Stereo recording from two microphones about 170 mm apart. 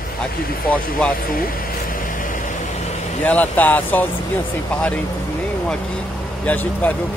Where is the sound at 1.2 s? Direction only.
60° left (ahead or behind).